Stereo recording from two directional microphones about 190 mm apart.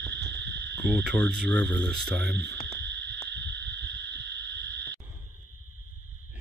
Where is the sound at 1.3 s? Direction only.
60° right (ahead or behind).